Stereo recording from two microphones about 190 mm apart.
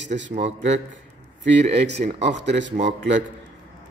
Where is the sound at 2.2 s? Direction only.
65° right (ahead or behind).